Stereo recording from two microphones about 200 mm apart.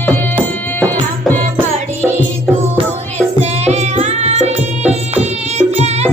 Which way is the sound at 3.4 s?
35° right (ahead or behind).